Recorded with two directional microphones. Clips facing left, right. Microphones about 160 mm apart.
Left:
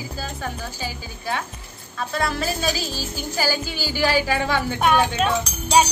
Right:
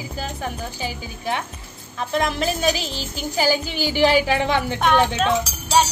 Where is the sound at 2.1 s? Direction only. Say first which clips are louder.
Right 3 dB; 15° right (ahead or behind).